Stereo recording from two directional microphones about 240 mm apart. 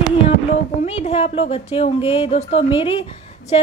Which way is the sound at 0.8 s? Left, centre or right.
Left.